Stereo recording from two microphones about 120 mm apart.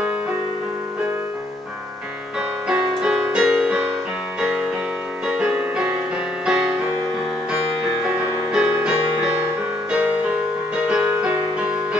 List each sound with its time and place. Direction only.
2.7 s music: 5° right (ahead or behind)
8.5 s music: 5° right (ahead or behind)